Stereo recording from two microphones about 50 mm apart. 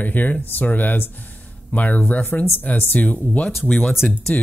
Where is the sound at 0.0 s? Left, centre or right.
Left.